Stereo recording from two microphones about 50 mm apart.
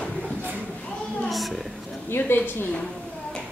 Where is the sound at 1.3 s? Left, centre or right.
Centre.